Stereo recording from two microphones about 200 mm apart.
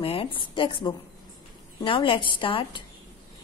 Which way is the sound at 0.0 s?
25° left (ahead or behind).